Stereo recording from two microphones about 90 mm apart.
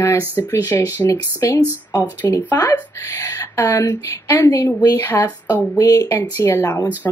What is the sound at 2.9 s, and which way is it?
Speech, 30° left (ahead or behind).